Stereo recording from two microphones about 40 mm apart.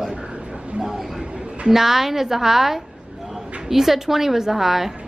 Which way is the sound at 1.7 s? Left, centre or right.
Centre.